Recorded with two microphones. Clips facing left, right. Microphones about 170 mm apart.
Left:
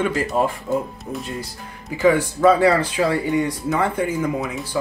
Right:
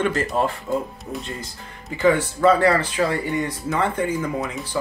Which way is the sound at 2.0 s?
10° left (ahead or behind).